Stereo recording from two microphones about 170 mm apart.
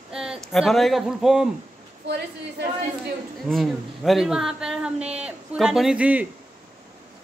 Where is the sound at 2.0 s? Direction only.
75° right (ahead or behind).